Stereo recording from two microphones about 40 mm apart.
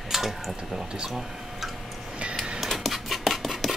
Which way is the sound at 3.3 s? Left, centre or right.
Centre.